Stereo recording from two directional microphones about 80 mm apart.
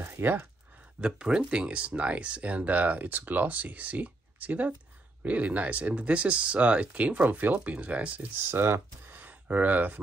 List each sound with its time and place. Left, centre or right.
0.0 s a sound: right
1.0 s speech: centre
8.5 s speech: right